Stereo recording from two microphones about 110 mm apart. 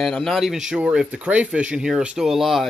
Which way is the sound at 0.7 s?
10° right (ahead or behind).